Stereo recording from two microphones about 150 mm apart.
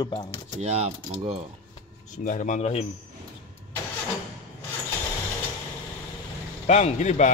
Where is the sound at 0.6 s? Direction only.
40° right (ahead or behind).